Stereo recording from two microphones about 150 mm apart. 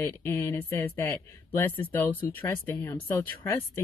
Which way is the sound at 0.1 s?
15° left (ahead or behind).